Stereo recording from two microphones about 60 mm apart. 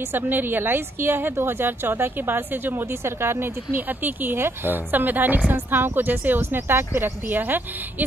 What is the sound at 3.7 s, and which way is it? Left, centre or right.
Speech, right.